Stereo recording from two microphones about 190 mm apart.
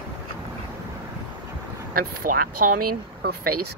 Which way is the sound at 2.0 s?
50° right (ahead or behind).